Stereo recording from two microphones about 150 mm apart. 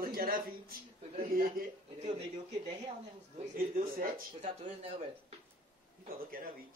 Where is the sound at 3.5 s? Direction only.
75° right (ahead or behind).